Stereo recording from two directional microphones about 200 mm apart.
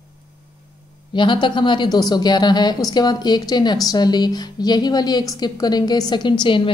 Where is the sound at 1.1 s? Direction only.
25° left (ahead or behind).